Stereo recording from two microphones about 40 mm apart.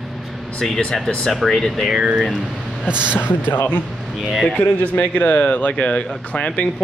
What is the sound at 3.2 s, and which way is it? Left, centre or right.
Speech, left.